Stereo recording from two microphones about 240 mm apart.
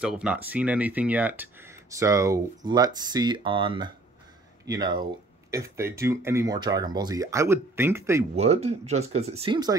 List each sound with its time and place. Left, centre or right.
0.0 s speech: centre
8.4 s speech: right